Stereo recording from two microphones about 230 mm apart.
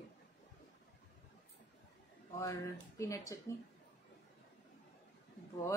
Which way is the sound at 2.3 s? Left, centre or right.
Centre.